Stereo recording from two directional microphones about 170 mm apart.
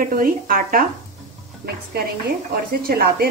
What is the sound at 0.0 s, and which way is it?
Speech, 55° right (ahead or behind).